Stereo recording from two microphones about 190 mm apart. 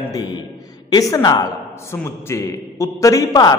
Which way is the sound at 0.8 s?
20° left (ahead or behind).